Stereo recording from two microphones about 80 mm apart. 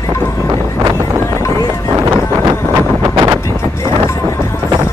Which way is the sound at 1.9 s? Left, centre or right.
Right.